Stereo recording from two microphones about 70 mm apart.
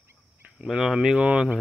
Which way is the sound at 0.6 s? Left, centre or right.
Centre.